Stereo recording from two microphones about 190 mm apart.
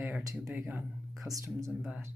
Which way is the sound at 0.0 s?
10° right (ahead or behind).